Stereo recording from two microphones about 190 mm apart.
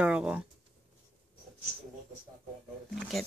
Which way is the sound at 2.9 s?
Centre (ahead or behind).